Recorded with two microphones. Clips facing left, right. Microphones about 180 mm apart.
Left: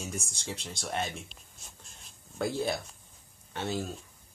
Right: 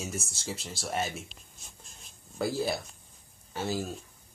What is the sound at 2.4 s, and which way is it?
Speech, 5° right (ahead or behind).